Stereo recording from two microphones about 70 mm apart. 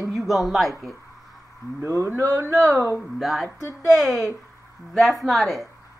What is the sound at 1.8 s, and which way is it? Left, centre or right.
Speech, right.